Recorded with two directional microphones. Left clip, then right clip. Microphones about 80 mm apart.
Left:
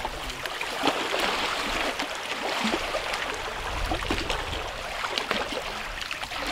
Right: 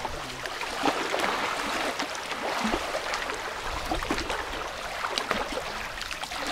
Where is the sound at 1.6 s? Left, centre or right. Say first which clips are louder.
Left 1 dB; centre.